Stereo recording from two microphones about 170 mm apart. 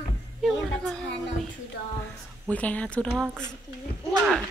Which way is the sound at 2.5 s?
10° left (ahead or behind).